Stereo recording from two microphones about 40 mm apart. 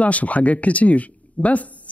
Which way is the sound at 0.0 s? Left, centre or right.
Left.